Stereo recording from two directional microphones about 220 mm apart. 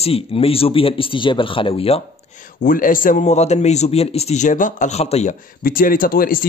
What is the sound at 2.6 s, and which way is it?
Speech, 40° left (ahead or behind).